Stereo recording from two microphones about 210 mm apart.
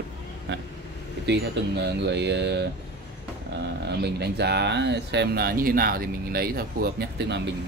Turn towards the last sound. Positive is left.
turn(degrees=-50)  # may be behind; listen again after turning